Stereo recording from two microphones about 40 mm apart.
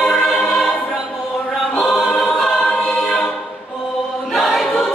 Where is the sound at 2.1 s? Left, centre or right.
Centre.